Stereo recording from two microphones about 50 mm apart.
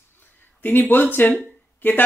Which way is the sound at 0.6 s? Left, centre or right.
Left.